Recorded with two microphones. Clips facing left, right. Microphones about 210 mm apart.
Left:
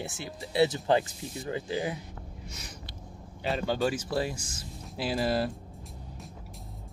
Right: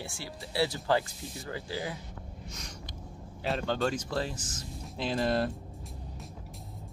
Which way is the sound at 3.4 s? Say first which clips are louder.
Left 2 dB; 5° left (ahead or behind).